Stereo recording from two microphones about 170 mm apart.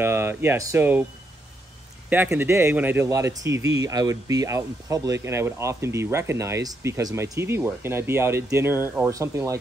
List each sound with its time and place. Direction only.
0.0 s speech: 10° right (ahead or behind)
2.0 s speech: 10° right (ahead or behind)